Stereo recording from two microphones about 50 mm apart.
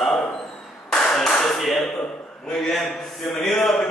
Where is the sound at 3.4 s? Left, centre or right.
Centre.